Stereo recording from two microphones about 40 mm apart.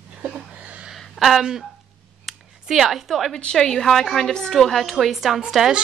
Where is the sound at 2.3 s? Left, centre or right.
Centre.